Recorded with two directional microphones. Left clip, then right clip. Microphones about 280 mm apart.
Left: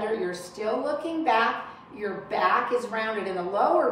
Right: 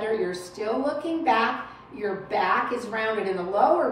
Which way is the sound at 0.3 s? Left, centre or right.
Centre.